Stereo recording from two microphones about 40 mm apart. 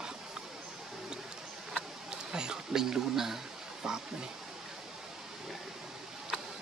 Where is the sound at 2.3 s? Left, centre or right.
Centre.